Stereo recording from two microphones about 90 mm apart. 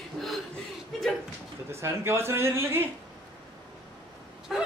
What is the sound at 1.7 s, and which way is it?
Speech, 30° right (ahead or behind).